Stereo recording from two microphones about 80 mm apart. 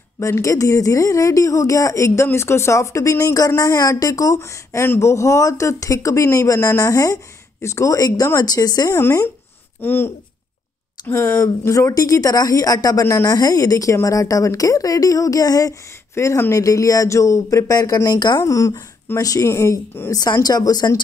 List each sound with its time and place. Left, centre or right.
0.2 s speech: left
4.8 s speech: left
5.1 s speech: left
9.8 s speech: left
11.9 s speech: left
16.2 s speech: left
18.4 s speech: left
19.5 s speech: left